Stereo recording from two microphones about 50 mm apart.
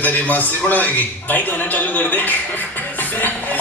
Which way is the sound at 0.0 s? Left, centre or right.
Left.